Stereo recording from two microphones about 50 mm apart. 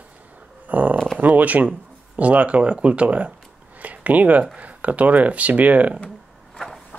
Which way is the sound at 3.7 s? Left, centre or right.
Right.